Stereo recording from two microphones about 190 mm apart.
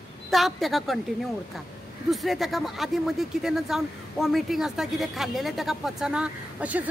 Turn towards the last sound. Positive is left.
turn(degrees=-5)  # may be behind; listen again after turning